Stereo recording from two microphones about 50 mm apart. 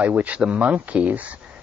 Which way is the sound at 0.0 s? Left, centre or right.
Right.